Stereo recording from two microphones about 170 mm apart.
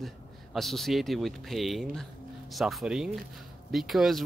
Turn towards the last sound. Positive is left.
turn(degrees=0)  # may be behind; listen again after turning